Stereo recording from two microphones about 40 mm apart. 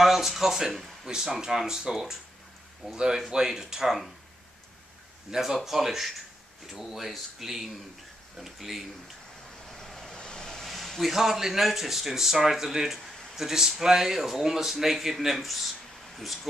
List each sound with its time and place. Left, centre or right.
0.0 s speech: centre
5.3 s speech: centre
9.7 s vehicle: centre
10.1 s vehicle: centre
10.7 s speech: centre